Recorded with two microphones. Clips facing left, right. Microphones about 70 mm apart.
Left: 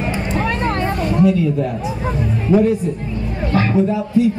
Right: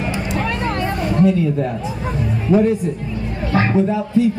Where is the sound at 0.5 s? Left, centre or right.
Left.